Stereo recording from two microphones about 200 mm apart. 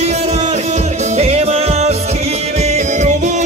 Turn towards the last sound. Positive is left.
turn(degrees=-35)  # may be behind; listen again after turning